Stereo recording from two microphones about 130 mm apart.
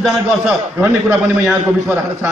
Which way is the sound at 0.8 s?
15° right (ahead or behind).